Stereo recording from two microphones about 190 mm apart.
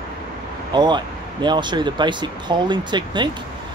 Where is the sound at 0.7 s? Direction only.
25° right (ahead or behind).